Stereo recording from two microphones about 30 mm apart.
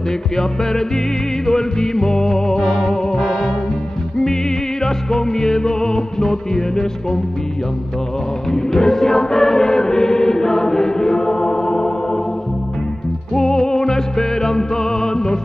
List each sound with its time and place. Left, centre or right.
0.4 s music: centre
4.8 s music: centre
8.5 s music: centre
13.3 s music: centre